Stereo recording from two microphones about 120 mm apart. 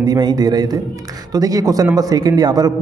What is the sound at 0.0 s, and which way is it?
A man's voice, 35° right (ahead or behind).